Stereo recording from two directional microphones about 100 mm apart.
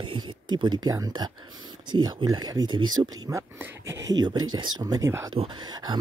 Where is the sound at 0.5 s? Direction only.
45° right (ahead or behind).